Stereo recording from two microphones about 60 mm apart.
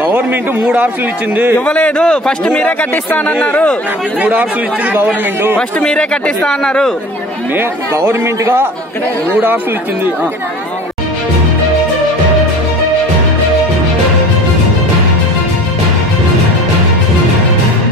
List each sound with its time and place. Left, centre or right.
0.0 s speech: right
1.7 s a man's voice: left
4.2 s speech: right
5.6 s speech: centre
7.9 s speech: right
9.3 s speech: right